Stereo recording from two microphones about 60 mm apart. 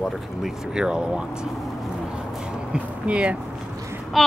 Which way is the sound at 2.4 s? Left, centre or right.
Centre.